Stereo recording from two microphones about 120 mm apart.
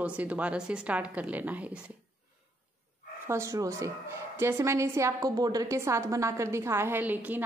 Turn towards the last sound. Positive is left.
turn(degrees=-15)  # may be behind; listen again after turning